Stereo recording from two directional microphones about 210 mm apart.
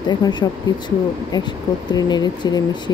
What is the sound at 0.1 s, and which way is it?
Speech, 20° left (ahead or behind).